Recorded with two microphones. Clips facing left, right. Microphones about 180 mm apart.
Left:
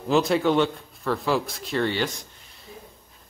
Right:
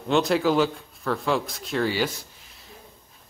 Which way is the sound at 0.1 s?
Centre (ahead or behind).